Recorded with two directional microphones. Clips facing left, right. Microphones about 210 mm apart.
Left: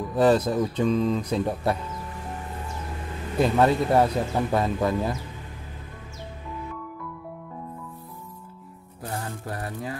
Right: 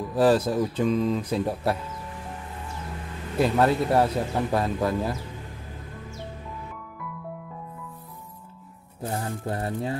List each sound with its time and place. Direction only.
0.1 s speech: 5° right (ahead or behind)
3.3 s speech: centre (ahead or behind)
9.0 s mantra: 25° right (ahead or behind)